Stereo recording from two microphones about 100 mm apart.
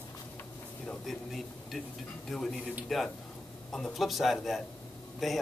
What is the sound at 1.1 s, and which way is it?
A man's voice, centre (ahead or behind).